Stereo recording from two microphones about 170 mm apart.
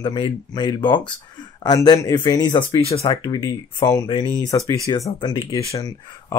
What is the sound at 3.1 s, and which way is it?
Speech, 25° left (ahead or behind).